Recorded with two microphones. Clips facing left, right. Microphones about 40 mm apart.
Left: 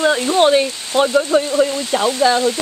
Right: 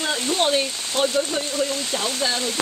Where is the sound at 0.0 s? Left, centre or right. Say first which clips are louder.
Left 8 dB; left.